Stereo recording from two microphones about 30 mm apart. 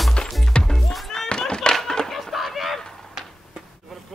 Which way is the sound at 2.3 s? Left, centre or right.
Centre.